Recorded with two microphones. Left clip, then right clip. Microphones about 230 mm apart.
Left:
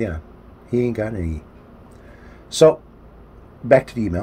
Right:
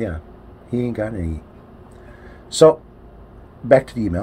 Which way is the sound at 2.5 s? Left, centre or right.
Centre.